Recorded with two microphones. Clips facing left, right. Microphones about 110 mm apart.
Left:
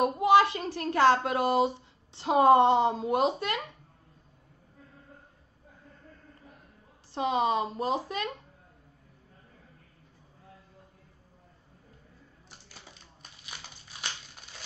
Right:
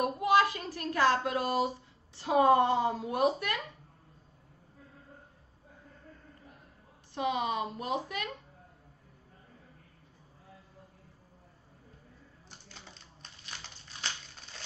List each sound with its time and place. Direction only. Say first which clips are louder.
0.0 s a sound: left 4 dB; 25° left (ahead or behind)
0.7 s speech: left 5 dB; 25° left (ahead or behind)
7.2 s speech: left 4 dB; 30° left (ahead or behind)
12.4 s typewriter: even; 5° left (ahead or behind)